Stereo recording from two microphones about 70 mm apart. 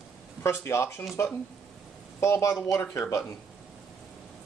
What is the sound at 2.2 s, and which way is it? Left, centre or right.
Speech, left.